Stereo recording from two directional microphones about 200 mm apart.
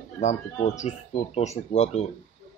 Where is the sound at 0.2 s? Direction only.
35° left (ahead or behind).